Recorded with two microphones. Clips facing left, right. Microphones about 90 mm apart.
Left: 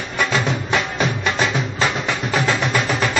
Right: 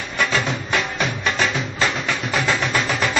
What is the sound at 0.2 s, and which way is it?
Music, 15° left (ahead or behind).